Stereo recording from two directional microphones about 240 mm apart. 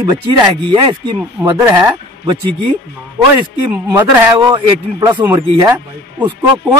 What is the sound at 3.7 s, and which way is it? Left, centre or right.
Speech, centre.